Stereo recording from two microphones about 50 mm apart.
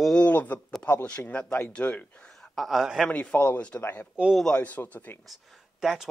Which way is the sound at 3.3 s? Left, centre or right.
Left.